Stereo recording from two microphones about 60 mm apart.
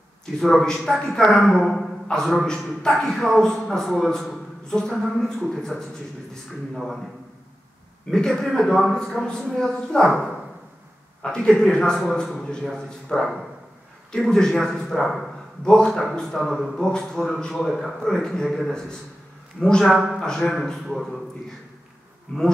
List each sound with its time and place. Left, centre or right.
0.4 s a man's voice: centre
2.0 s a man's voice: centre
8.1 s a man's voice: centre
11.2 s a man's voice: centre
19.9 s a man's voice: centre
20.2 s a man's voice: centre
22.3 s bee: centre